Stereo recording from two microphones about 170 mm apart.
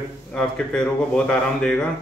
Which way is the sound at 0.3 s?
5° left (ahead or behind).